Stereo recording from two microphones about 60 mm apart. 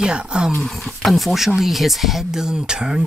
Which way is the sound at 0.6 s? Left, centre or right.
Centre.